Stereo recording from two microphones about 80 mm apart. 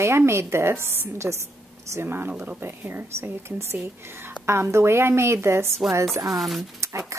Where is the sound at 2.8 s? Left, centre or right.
Right.